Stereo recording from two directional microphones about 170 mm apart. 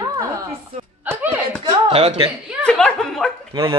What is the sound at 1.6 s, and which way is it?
Speech, 35° right (ahead or behind).